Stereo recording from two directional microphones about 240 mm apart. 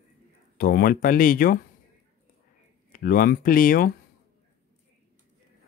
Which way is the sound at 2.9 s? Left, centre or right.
Left.